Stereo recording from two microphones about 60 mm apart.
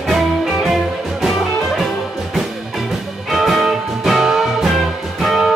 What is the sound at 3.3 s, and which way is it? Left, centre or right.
Music, centre.